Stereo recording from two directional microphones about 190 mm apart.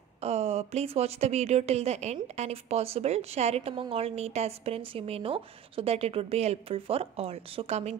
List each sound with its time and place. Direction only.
0.2 s speech: 35° right (ahead or behind)